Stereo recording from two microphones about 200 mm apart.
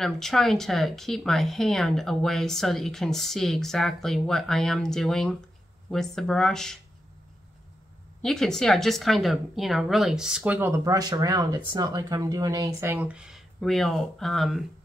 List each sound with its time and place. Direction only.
0.0 s speech: centre (ahead or behind)
8.2 s speech: 5° left (ahead or behind)